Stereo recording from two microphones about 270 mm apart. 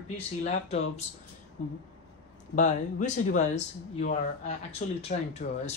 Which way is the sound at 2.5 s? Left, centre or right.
Left.